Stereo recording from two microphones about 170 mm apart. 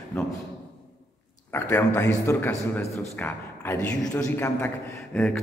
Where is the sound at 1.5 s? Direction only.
15° left (ahead or behind).